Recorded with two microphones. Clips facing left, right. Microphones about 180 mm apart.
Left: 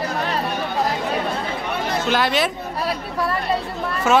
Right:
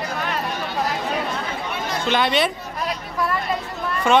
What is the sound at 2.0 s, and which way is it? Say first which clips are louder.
Speech: right 1 dB; centre (ahead or behind).